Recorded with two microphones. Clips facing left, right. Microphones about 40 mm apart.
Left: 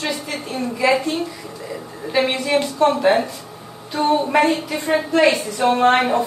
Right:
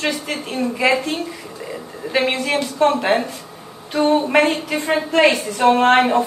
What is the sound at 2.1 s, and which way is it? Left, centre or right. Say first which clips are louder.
Speech: even; right.